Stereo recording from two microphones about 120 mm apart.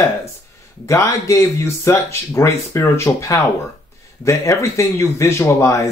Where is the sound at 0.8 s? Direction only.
25° left (ahead or behind).